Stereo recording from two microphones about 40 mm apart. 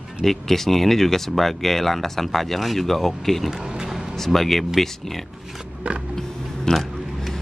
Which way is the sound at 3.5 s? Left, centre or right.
Centre.